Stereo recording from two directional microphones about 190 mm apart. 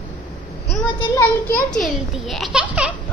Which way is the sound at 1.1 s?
20° left (ahead or behind).